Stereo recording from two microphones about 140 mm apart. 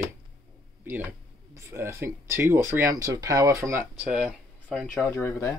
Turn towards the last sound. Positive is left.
turn(degrees=15)  # may be behind; listen again after turning